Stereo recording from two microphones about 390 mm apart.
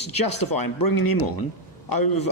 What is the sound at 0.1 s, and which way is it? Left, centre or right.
A man's voice, left.